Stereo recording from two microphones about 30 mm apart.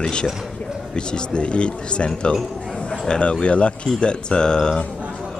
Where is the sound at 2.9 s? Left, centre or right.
Left.